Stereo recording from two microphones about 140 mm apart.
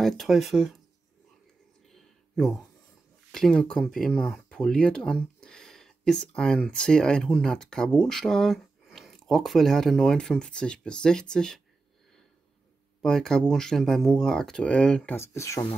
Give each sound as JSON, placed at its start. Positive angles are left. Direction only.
{"t": 0.0, "sound": "speech", "side_deg": 0}
{"t": 1.9, "sound": "a sound", "side_deg": 0}
{"t": 3.3, "sound": "speech", "side_deg": 5}
{"t": 13.0, "sound": "speech", "side_deg": 5}
{"t": 15.1, "sound": "speech", "side_deg": 20}